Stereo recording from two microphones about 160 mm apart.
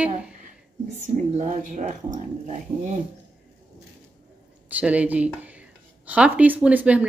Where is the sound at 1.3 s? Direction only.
45° right (ahead or behind).